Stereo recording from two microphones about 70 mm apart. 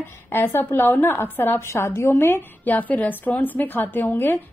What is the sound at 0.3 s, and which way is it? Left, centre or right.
A woman's voice, left.